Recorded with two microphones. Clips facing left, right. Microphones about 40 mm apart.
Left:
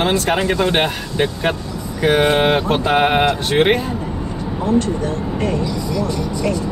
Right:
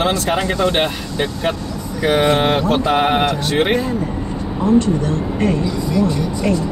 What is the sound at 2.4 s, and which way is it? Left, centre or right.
Mantra, centre.